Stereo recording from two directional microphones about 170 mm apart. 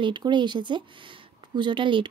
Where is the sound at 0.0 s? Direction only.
25° right (ahead or behind).